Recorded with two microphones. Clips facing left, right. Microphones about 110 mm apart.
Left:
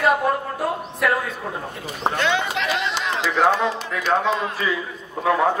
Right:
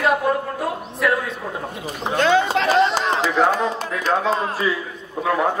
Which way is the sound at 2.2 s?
40° right (ahead or behind).